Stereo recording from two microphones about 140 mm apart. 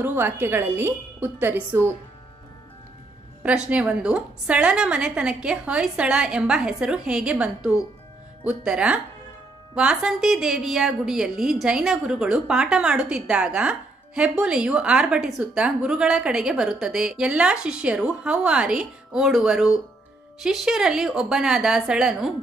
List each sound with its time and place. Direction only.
0.0 s a woman's voice: 15° right (ahead or behind)
3.4 s a woman's voice: 10° right (ahead or behind)